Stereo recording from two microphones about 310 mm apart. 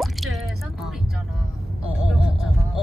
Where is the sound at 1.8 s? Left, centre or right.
Centre.